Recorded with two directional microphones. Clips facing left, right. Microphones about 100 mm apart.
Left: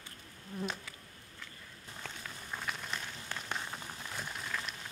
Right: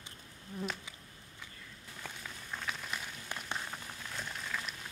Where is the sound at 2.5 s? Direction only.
10° left (ahead or behind).